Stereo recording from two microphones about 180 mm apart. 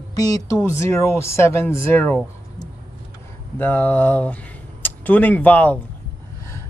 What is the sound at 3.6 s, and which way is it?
Speech, 10° left (ahead or behind).